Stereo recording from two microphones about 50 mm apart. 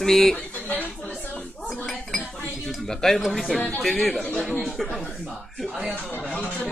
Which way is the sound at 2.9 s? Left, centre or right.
Centre.